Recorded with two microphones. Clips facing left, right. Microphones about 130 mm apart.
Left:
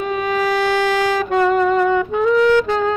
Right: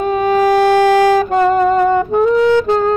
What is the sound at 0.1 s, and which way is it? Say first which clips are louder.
Saxophone: right 7 dB; 40° right (ahead or behind).